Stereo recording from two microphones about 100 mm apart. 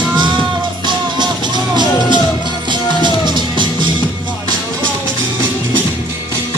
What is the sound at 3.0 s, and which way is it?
Music, 50° right (ahead or behind).